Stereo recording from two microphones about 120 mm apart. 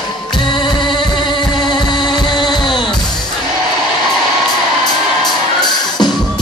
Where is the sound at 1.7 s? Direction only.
40° left (ahead or behind).